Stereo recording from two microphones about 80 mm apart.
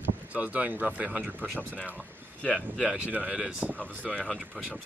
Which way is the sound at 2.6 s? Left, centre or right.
Centre.